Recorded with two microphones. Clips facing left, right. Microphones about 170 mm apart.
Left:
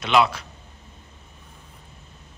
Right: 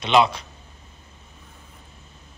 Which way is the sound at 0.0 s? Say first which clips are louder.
Right 1 dB; 5° left (ahead or behind).